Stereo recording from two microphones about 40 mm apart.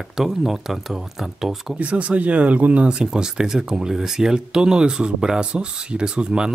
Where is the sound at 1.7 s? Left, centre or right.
Right.